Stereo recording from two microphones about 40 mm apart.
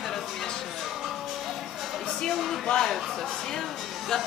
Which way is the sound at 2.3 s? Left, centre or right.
Centre.